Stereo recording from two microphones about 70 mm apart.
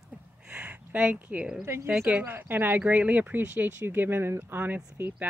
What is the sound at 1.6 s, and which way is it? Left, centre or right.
Speech, right.